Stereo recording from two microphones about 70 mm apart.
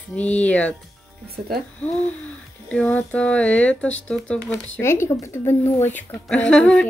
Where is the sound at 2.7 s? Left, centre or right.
Centre.